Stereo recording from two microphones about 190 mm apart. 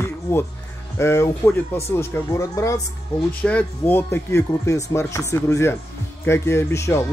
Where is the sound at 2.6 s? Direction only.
15° left (ahead or behind).